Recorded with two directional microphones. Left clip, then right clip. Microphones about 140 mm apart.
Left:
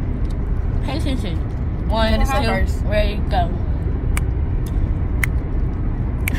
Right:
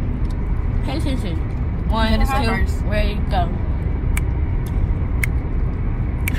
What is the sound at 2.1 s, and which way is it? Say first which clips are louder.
Speech: left 1 dB; 10° left (ahead or behind).